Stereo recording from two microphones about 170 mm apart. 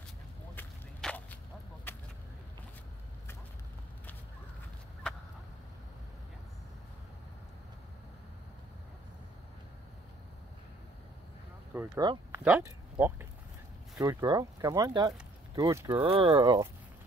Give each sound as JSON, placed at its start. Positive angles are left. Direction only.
{"t": 0.6, "sound": "a sound", "side_deg": 10}
{"t": 1.9, "sound": "vehicle", "side_deg": 10}
{"t": 11.9, "sound": "speech", "side_deg": -25}
{"t": 12.4, "sound": "speech", "side_deg": -10}
{"t": 16.0, "sound": "speech", "side_deg": -30}